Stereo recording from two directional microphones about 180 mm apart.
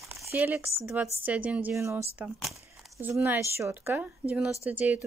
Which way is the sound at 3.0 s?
10° right (ahead or behind).